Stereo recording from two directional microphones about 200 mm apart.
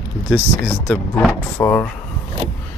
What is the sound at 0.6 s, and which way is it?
Speech, 10° left (ahead or behind).